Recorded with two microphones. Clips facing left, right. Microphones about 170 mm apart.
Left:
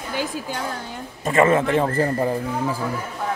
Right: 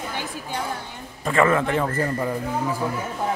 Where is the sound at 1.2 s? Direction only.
20° left (ahead or behind).